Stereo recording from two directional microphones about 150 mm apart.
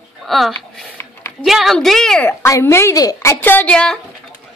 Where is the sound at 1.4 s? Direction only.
Centre (ahead or behind).